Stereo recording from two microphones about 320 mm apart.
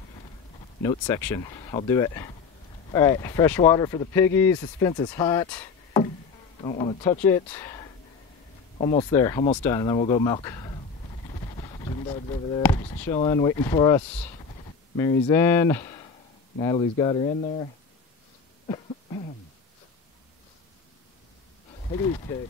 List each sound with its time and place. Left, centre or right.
0.8 s speech: centre
11.5 s a sound: centre
12.6 s speech: centre
21.8 s speech: centre